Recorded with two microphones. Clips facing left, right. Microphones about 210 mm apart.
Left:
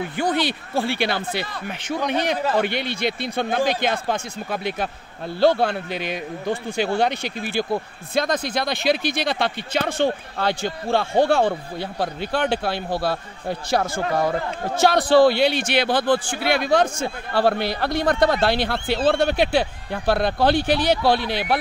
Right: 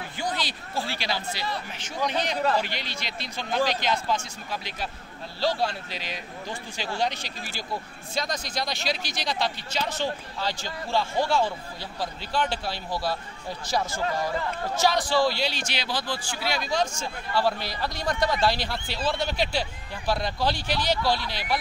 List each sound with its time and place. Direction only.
0.2 s a man's voice: 60° left (ahead or behind)